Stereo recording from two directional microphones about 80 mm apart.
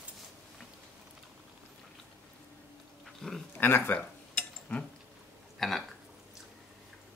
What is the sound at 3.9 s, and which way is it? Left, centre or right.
Cutlery, centre.